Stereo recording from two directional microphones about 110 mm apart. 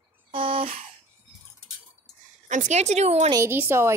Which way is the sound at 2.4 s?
90° right.